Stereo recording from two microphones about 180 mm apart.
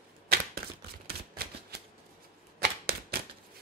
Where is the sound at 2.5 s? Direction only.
60° right (ahead or behind).